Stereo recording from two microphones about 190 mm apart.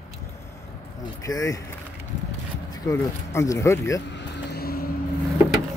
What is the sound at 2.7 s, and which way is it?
A man's voice, 20° left (ahead or behind).